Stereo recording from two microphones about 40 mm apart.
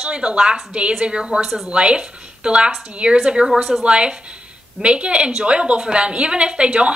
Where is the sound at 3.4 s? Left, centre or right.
Centre.